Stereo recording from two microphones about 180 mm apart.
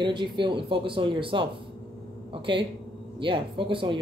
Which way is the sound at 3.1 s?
30° right (ahead or behind).